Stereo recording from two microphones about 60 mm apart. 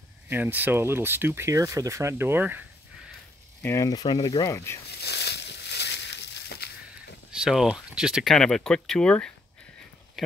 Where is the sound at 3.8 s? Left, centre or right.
Left.